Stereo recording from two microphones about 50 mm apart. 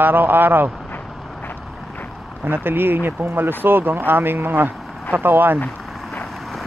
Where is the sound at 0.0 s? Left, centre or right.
Right.